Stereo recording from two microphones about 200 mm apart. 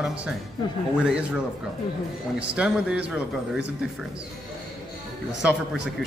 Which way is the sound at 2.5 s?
5° right (ahead or behind).